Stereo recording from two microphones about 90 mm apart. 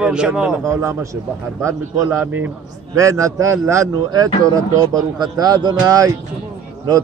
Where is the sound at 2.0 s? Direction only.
20° right (ahead or behind).